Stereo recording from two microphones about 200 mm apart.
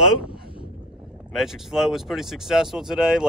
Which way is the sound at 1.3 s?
Centre (ahead or behind).